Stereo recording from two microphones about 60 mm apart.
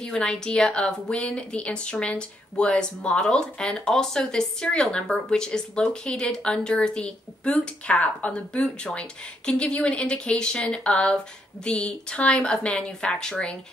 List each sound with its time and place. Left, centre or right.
0.0 s speech: centre